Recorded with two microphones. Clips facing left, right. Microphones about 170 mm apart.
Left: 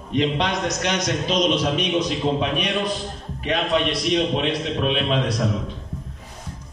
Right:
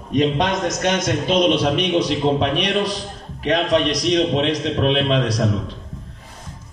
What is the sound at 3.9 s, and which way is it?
Speech, 90° right.